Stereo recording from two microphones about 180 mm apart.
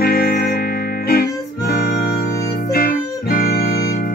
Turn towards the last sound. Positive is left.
turn(degrees=60)  # may be behind; listen again after turning